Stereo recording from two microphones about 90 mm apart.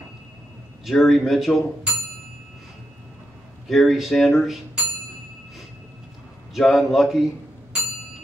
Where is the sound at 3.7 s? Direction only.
Centre (ahead or behind).